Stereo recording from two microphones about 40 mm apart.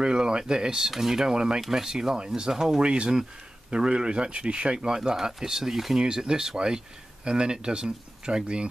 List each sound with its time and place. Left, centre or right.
0.0 s speech: right
2.5 s speech: centre
2.8 s speech: right; by 5.9 s centre
5.9 s speech: centre